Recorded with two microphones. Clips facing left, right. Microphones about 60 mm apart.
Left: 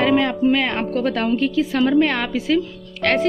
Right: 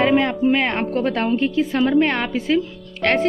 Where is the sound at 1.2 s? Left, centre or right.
Centre.